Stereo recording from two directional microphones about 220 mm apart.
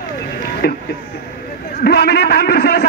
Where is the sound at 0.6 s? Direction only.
50° left (ahead or behind).